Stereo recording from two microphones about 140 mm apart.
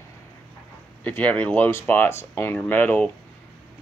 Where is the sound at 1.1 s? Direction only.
15° left (ahead or behind).